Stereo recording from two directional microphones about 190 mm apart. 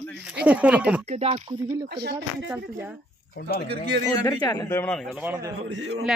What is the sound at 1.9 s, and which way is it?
Speech, 60° right (ahead or behind).